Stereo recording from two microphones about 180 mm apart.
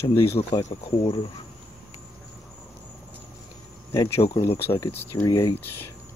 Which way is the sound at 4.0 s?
35° left (ahead or behind).